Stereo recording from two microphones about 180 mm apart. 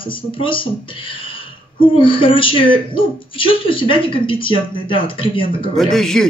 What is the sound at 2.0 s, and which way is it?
Speech, 30° left (ahead or behind).